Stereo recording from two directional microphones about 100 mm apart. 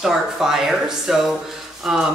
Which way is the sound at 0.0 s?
5° right (ahead or behind).